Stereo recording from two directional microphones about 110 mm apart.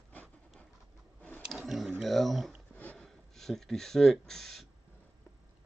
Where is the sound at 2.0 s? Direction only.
Centre (ahead or behind).